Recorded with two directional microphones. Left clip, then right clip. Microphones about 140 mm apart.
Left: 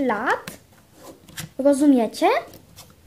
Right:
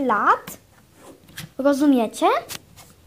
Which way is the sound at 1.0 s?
25° left (ahead or behind).